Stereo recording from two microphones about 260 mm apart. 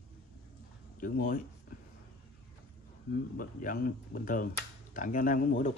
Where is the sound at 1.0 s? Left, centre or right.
Left.